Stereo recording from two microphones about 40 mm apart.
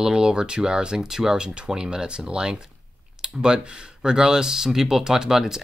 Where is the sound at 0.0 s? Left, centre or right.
Centre.